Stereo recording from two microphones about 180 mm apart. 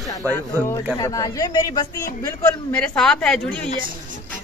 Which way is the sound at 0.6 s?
15° left (ahead or behind).